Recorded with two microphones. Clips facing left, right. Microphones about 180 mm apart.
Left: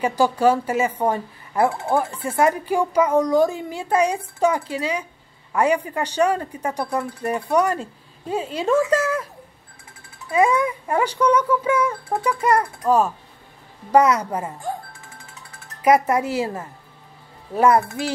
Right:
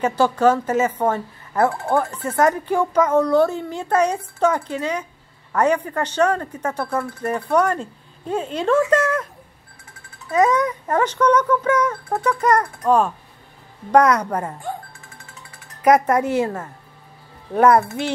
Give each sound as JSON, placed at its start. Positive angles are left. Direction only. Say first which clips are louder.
{"t": 0.0, "sound": "a woman's voice", "louder": "right 1 dB", "side_deg": 10}
{"t": 10.3, "sound": "a woman's voice", "louder": "right 1 dB", "side_deg": 10}
{"t": 16.2, "sound": "a woman's voice", "louder": "right 3 dB", "side_deg": 10}